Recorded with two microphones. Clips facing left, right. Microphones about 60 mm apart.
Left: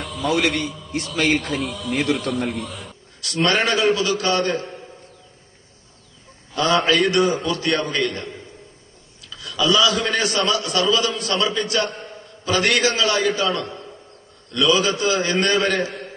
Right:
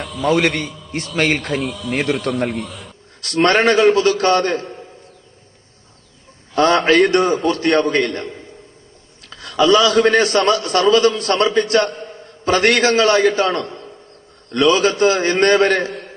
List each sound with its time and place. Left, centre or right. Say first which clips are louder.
0.0 s a sound: right 4 dB; centre
0.3 s a man's voice: right 4 dB; right
0.7 s a sound: left 2 dB; centre
1.4 s a man's voice: right 3 dB; centre
2.2 s a man's voice: right 4 dB; right
2.5 s a man's voice: right 3 dB; centre
3.2 s a man's voice: right 5 dB; right
6.5 s a man's voice: right 5 dB; right